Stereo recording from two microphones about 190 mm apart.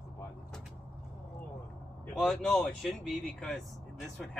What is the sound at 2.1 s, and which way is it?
Speech, centre (ahead or behind).